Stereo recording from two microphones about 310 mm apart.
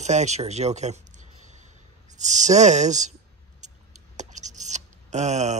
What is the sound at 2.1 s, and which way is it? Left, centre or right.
Speech, right.